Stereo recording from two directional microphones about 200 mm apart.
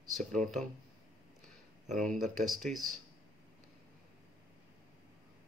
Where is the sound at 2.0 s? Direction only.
Centre (ahead or behind).